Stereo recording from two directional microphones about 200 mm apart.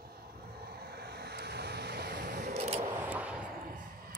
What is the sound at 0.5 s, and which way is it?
Vehicle, 50° right (ahead or behind).